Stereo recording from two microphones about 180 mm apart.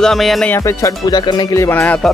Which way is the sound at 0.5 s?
15° left (ahead or behind).